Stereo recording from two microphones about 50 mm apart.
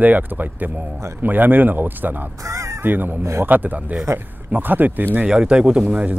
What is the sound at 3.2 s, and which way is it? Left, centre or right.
Speech, right.